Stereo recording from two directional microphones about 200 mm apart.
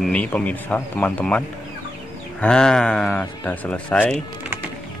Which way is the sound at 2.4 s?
5° left (ahead or behind).